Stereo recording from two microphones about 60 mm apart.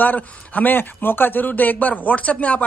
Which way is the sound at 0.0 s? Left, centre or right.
Left.